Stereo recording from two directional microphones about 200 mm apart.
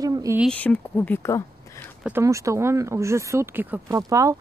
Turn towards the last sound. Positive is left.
turn(degrees=-15)  # may be behind; listen again after turning